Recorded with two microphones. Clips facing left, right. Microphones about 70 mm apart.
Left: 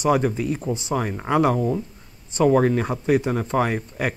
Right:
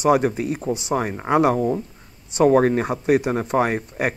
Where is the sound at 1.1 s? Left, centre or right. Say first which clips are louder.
Right 2 dB; centre.